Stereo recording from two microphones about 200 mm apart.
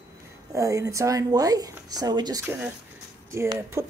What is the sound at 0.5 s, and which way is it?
A woman's voice, 15° right (ahead or behind).